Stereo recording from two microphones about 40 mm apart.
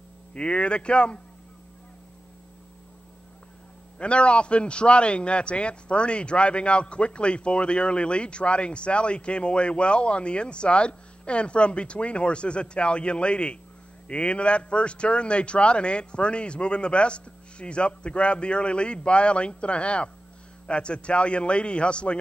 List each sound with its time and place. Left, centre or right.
0.3 s a man's voice: left
4.0 s a man's voice: left